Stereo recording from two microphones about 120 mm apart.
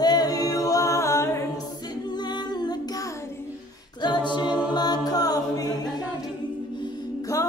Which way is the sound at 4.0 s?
40° left (ahead or behind).